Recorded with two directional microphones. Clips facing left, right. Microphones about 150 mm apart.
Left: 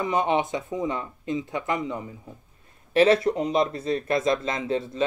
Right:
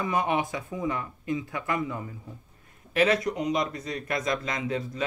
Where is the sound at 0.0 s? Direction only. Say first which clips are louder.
Left 3 dB; 25° left (ahead or behind).